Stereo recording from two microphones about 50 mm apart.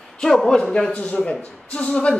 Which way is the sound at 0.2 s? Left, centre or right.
Centre.